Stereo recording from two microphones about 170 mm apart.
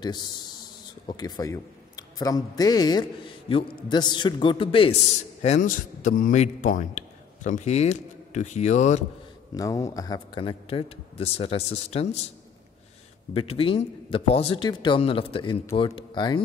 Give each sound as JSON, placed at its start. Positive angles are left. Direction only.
{"t": 0.0, "sound": "a man's voice", "side_deg": 25}
{"t": 5.4, "sound": "a man's voice", "side_deg": 45}
{"t": 9.5, "sound": "a man's voice", "side_deg": 20}
{"t": 13.3, "sound": "a man's voice", "side_deg": 35}